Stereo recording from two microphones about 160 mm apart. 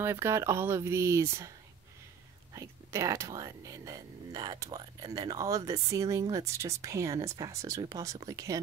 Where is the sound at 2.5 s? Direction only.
20° right (ahead or behind).